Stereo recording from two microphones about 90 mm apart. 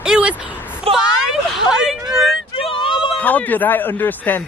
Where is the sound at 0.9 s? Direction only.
90° right.